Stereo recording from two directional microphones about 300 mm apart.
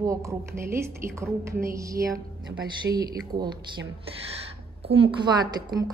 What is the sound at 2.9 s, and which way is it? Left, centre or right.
Speech, right.